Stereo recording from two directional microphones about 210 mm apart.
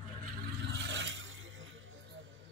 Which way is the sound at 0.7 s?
60° right (ahead or behind).